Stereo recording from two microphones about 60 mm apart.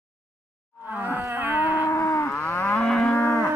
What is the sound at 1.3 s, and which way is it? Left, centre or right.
Livestock, right.